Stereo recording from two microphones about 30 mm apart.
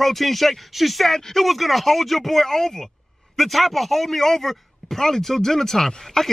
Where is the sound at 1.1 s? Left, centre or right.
Centre.